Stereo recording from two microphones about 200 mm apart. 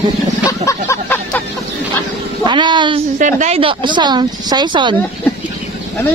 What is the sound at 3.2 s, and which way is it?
Speech, 35° right (ahead or behind).